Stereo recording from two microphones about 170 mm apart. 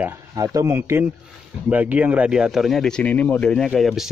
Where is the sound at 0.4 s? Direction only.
20° right (ahead or behind).